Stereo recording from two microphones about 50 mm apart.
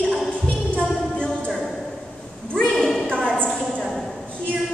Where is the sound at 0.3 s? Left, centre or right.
Left.